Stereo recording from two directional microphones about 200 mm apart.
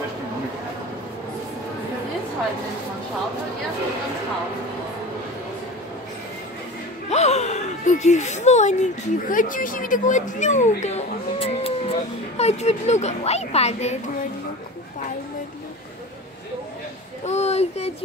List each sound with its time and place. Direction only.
7.1 s a woman's voice: 35° left (ahead or behind)
17.2 s speech: 35° left (ahead or behind)